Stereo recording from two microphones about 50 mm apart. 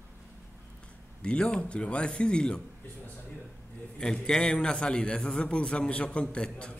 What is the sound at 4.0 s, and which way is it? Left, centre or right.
A man's voice, centre.